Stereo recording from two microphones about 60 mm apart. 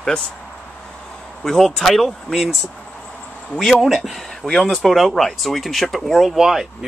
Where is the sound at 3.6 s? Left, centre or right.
Centre.